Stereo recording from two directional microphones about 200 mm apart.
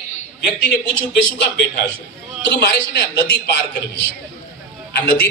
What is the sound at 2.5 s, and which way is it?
Speech, 60° left (ahead or behind).